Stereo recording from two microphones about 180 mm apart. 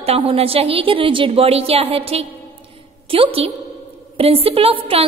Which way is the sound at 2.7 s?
30° right (ahead or behind).